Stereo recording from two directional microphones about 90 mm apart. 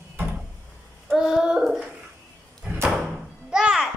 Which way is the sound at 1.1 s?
5° right (ahead or behind).